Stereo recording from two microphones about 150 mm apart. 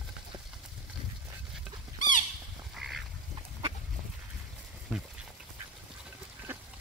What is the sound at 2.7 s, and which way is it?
Duck, 5° right (ahead or behind).